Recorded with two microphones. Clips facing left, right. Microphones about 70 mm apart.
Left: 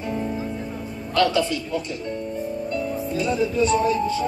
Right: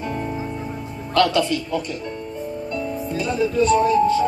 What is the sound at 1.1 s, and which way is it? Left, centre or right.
Speech, right.